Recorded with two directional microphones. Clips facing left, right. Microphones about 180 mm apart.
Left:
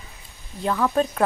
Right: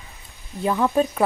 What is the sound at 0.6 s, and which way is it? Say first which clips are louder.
Speech: right 2 dB; 15° right (ahead or behind).